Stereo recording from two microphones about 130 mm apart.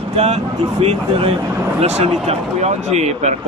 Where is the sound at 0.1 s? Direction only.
50° right (ahead or behind).